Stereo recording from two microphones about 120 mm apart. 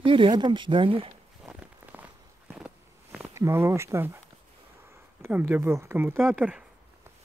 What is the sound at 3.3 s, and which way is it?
Speech, 25° right (ahead or behind).